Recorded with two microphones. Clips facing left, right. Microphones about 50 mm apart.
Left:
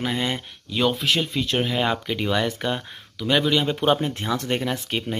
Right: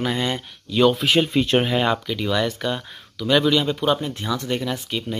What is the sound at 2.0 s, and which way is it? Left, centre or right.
Speech, left.